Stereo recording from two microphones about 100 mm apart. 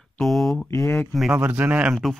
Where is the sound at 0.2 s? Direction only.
Centre (ahead or behind).